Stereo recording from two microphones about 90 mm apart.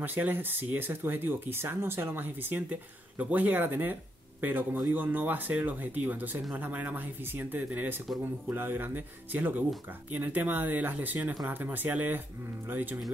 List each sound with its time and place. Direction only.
0.0 s speech: 20° right (ahead or behind)